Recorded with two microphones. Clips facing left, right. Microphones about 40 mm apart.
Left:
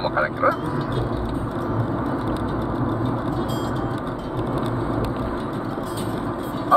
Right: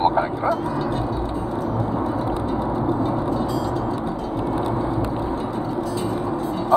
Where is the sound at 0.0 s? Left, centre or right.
Centre.